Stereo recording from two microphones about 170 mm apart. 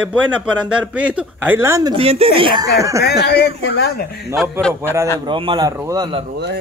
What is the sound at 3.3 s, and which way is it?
Speech, 75° left (ahead or behind).